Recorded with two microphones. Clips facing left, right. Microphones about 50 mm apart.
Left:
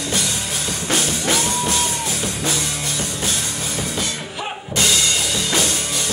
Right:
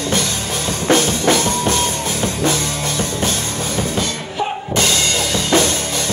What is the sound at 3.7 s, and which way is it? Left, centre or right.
Music, right.